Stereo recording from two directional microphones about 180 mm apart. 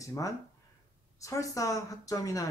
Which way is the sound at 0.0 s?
20° left (ahead or behind).